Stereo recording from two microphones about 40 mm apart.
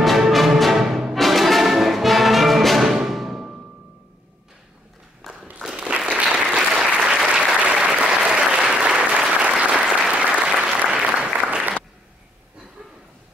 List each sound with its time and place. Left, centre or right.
0.0 s music: centre
5.2 s a sound: centre
5.8 s applause: right
6.6 s applause: centre
6.9 s applause: right